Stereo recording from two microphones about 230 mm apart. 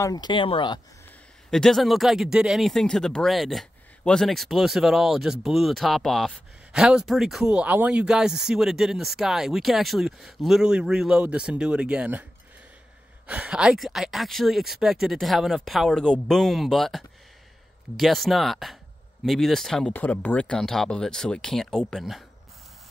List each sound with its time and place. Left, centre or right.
0.0 s speech: centre
1.5 s speech: centre
13.3 s speech: centre